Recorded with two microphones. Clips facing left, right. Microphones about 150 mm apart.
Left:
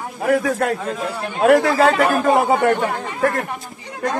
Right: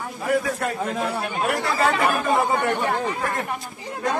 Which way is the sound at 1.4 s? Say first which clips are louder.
Left 10 dB; 90° left.